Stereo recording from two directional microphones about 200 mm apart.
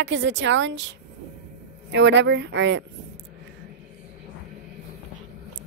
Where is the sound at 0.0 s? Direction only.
65° right (ahead or behind).